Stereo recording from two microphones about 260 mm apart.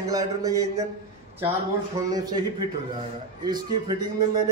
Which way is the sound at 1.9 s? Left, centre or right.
Centre.